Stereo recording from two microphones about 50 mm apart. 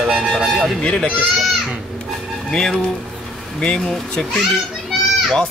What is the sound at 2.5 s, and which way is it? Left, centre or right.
Speech, centre.